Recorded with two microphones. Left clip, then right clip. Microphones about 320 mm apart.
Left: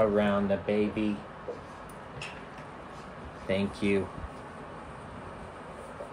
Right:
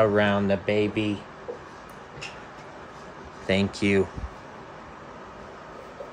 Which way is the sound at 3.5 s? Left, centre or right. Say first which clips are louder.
Right 5 dB; right.